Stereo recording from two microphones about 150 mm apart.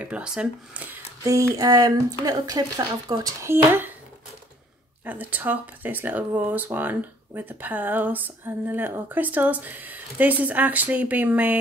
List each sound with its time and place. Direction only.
0.0 s speech: 5° right (ahead or behind)
1.2 s speech: 20° right (ahead or behind)
5.0 s speech: 10° right (ahead or behind)